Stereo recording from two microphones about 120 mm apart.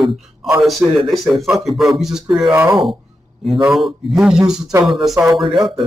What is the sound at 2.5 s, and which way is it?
Speech, 20° right (ahead or behind).